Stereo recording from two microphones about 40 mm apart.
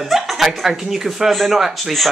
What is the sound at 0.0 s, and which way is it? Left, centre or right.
Speech, centre.